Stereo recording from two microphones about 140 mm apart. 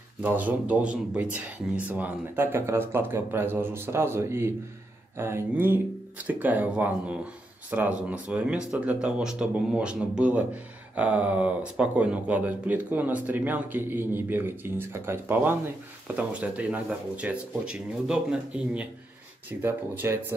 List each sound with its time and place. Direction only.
0.2 s speech: 10° right (ahead or behind)